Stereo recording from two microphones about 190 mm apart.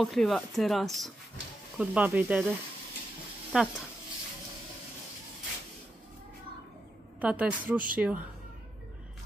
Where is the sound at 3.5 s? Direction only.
5° right (ahead or behind).